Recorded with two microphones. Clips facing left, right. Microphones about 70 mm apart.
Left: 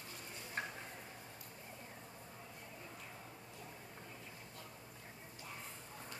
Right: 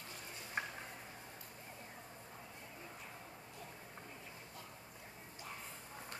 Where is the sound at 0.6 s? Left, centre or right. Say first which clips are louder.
Right 1 dB; centre.